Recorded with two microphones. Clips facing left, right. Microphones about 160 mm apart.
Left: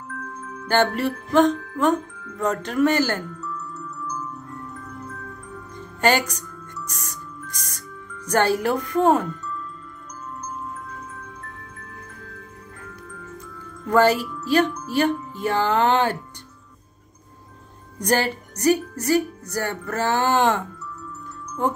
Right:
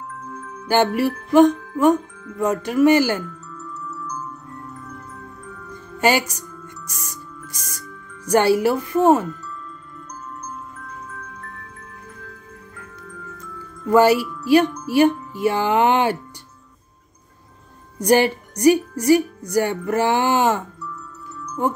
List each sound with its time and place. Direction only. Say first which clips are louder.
0.7 s speech: right 3 dB; 10° right (ahead or behind)
5.9 s a woman's voice: right 1 dB; 10° right (ahead or behind)
8.3 s speech: right 4 dB; 10° right (ahead or behind)
13.8 s speech: right 3 dB; 10° right (ahead or behind)
17.9 s speech: right 6 dB; 15° right (ahead or behind)